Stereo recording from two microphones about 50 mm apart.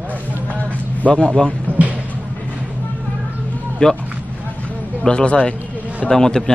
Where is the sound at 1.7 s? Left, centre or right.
Right.